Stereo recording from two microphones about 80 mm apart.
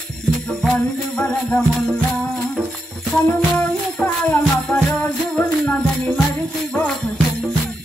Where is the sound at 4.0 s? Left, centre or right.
Centre.